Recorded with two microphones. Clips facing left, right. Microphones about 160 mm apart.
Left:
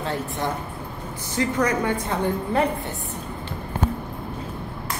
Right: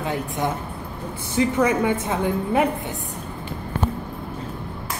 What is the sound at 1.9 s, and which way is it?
A woman's voice, 20° right (ahead or behind).